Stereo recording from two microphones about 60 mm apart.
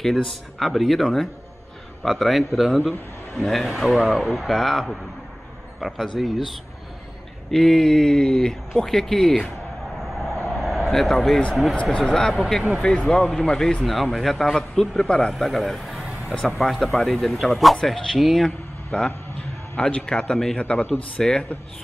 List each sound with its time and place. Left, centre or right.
0.0 s speech: centre
10.2 s vehicle: centre
11.7 s speech: centre
15.3 s a man's voice: centre
16.3 s speech: centre
18.9 s a man's voice: centre